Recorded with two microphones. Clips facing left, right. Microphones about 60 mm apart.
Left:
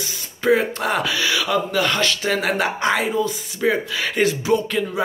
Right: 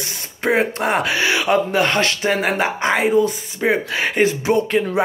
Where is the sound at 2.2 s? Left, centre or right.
Right.